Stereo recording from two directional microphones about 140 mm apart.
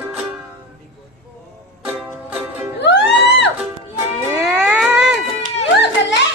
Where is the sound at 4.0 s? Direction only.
20° right (ahead or behind).